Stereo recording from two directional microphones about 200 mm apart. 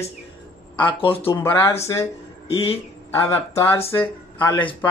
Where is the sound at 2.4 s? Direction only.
30° left (ahead or behind).